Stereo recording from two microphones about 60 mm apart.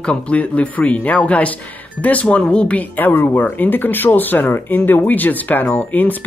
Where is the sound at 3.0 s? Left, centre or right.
Left.